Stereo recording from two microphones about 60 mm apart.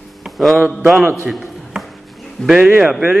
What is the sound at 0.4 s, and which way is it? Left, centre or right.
Speech, centre.